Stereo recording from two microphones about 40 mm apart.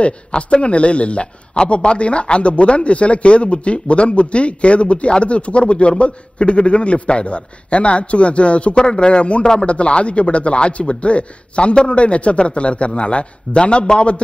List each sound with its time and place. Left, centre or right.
0.0 s a man's voice: left